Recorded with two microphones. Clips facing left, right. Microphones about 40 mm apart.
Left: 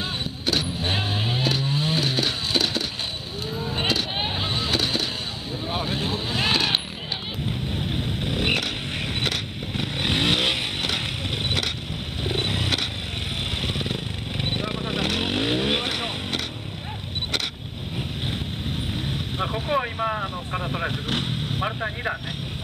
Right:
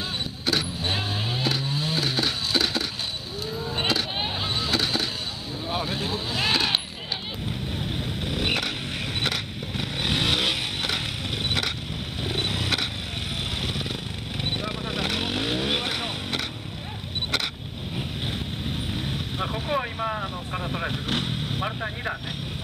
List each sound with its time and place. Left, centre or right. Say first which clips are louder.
0.6 s vehicle: left 2 dB; centre
3.4 s vehicle: left 1 dB; centre
17.9 s vehicle: left 1 dB; centre